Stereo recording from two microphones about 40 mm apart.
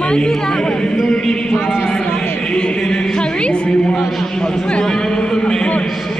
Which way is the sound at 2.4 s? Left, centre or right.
Left.